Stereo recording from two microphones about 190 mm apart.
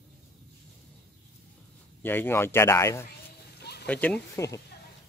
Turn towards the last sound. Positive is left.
turn(degrees=10)  # may be behind; listen again after turning